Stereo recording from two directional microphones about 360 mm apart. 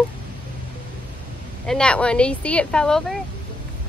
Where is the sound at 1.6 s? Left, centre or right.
Centre.